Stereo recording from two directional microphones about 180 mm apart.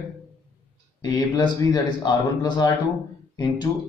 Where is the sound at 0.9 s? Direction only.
20° left (ahead or behind).